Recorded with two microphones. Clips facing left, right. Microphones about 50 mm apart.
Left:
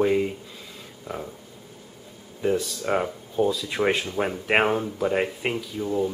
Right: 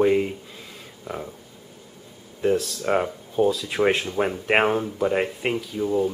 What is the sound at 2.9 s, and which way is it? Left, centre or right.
Speech, centre.